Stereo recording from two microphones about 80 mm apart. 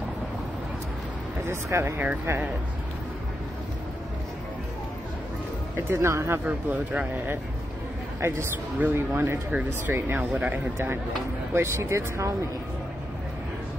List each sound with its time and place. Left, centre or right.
1.4 s speech: right
5.8 s speech: right
6.4 s speech: centre
8.2 s speech: right
9.5 s speech: centre; by 12.4 s right